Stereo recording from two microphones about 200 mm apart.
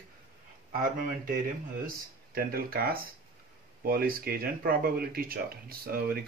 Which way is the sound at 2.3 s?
50° right (ahead or behind).